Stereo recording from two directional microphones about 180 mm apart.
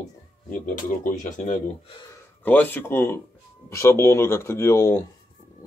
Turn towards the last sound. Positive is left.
turn(degrees=15)  # may be behind; listen again after turning